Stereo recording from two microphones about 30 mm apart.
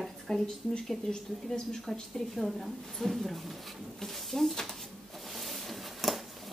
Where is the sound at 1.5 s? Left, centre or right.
Centre.